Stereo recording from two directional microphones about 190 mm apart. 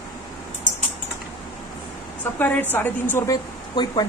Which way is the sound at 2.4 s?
10° left (ahead or behind).